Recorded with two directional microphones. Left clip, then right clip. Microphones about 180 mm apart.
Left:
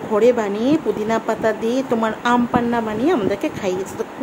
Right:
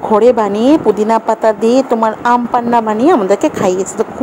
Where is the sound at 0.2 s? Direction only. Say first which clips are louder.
Right 3 dB; 30° right (ahead or behind).